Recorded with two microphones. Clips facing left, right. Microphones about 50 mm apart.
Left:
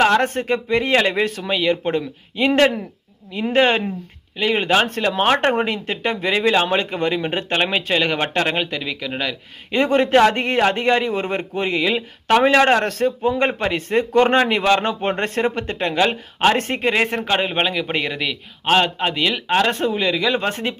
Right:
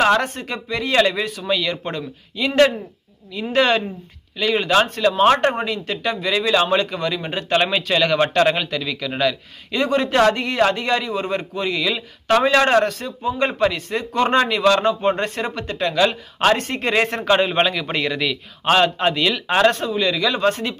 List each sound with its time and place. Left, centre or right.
0.2 s a man's voice: left
1.2 s speech: left
1.5 s a man's voice: left
4.8 s speech: left; by 9.4 s centre
9.7 s a man's voice: left
12.8 s a man's voice: left
16.8 s speech: centre
19.7 s speech: left